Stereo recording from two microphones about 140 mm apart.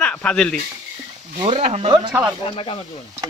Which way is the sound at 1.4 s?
45° right (ahead or behind).